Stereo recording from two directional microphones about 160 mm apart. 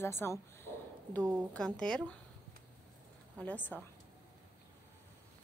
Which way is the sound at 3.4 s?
10° left (ahead or behind).